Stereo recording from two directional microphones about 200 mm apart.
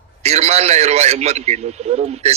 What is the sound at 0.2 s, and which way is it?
A man's voice, 30° right (ahead or behind).